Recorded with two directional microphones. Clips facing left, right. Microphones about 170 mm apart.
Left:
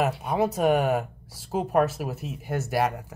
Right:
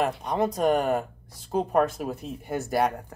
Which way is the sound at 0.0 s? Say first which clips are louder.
Left 1 dB; 5° left (ahead or behind).